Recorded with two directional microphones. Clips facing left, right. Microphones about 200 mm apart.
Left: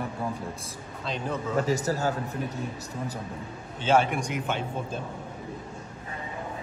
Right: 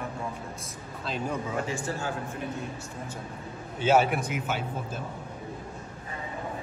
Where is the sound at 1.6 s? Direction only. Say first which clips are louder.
Left 6 dB; 40° left (ahead or behind).